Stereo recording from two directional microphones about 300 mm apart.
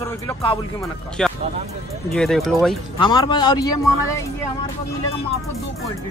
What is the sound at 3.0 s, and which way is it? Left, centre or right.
Speech, centre.